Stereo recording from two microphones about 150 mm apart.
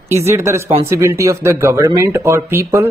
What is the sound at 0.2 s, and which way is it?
Speech, 15° right (ahead or behind).